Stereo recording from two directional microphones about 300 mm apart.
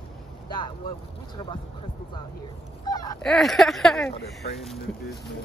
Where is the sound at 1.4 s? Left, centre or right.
Centre.